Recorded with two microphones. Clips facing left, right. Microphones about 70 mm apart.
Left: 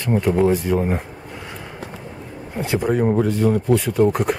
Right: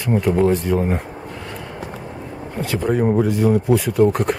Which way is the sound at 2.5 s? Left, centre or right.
Centre.